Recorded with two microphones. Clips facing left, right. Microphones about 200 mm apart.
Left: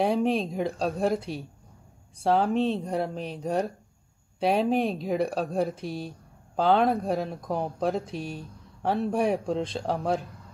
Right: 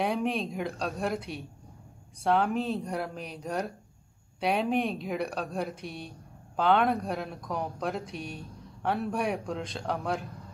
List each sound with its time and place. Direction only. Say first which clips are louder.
0.0 s speech: left 5 dB; 35° left (ahead or behind)